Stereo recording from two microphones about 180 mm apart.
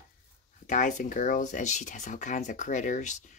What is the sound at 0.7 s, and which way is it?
Speech, 45° left (ahead or behind).